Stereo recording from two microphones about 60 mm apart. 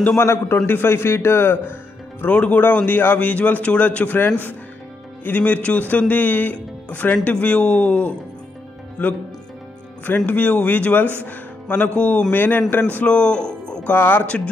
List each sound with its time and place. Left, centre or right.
0.2 s a man's voice: left
2.3 s speech: left
2.6 s speech: left
12.3 s a man's voice: left
13.1 s music: centre
13.8 s a man's voice: left
14.2 s speech: centre